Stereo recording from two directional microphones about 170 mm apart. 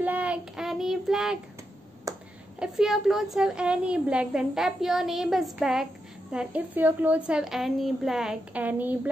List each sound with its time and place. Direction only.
0.0 s child singing: 10° right (ahead or behind)
2.1 s a sound: 20° right (ahead or behind)
2.6 s a woman's voice: centre (ahead or behind)